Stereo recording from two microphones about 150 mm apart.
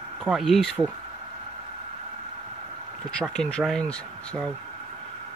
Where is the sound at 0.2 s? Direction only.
Centre (ahead or behind).